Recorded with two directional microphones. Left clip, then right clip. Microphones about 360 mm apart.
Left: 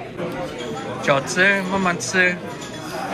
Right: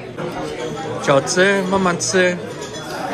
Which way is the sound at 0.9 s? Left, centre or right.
Centre.